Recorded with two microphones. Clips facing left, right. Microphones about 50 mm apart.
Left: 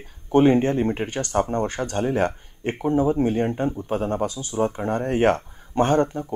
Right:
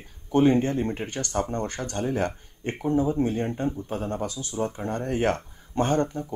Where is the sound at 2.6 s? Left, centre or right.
Left.